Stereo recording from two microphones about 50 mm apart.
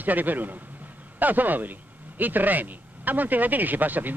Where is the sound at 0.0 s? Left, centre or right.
Right.